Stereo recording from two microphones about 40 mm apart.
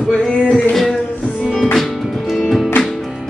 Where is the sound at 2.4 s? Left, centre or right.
Centre.